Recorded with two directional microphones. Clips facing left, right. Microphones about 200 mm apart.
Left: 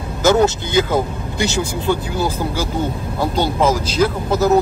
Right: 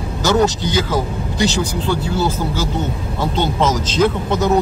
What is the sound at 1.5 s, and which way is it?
Speech, 15° left (ahead or behind).